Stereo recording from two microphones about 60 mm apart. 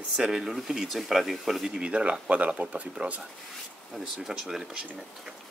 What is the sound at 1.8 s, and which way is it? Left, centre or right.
Speech, centre.